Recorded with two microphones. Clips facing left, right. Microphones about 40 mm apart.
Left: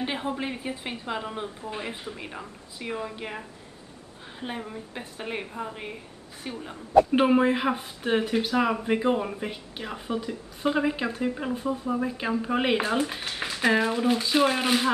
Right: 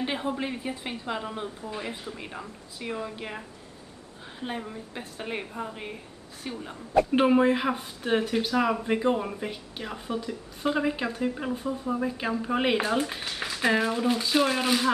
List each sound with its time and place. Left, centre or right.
0.0 s speech: centre
1.6 s speech: left
2.1 s a woman's voice: centre